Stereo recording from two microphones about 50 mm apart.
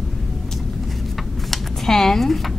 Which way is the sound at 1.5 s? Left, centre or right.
Centre.